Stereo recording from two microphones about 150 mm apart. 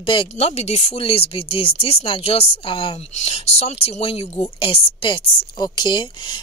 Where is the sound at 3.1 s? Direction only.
50° left (ahead or behind).